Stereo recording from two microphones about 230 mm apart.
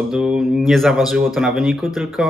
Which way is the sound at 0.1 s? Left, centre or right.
Centre.